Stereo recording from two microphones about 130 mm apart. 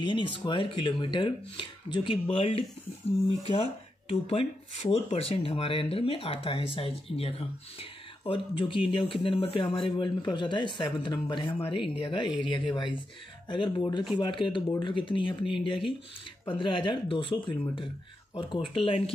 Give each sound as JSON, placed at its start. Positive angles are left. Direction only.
{"t": 0.0, "sound": "speech", "side_deg": 35}